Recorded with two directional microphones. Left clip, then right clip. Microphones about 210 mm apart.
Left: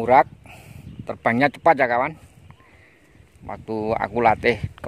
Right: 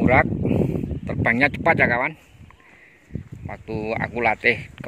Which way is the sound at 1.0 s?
10° left (ahead or behind).